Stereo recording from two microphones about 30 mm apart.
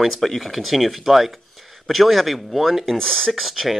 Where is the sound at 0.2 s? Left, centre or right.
Centre.